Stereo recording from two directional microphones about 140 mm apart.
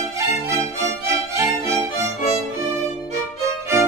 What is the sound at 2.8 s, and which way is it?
Violin, 20° right (ahead or behind).